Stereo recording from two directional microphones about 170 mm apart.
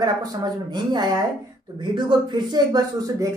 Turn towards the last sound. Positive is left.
turn(degrees=-20)  # may be behind; listen again after turning